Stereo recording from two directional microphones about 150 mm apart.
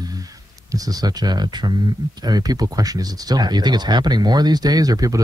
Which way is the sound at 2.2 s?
25° right (ahead or behind).